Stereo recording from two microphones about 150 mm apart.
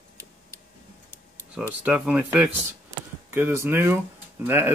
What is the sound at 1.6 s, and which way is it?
Speech, 10° right (ahead or behind).